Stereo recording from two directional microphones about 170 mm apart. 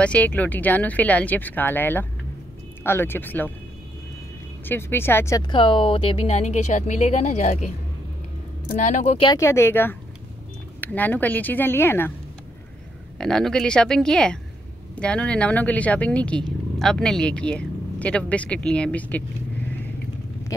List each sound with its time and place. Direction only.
0.0 s speech: 10° left (ahead or behind)
4.6 s speech: 15° left (ahead or behind); by 7.7 s 45° left (ahead or behind)
8.7 s speech: 45° left (ahead or behind)
9.2 s speech: 20° left (ahead or behind)
13.2 s speech: 5° left (ahead or behind)